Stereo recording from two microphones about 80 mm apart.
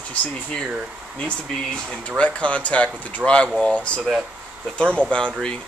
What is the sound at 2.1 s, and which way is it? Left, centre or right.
Speech, centre.